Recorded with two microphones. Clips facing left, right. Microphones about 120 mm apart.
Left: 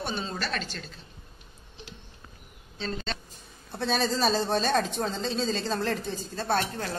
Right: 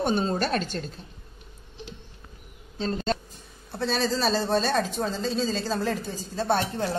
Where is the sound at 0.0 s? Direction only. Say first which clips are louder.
Right 8 dB; 45° right (ahead or behind).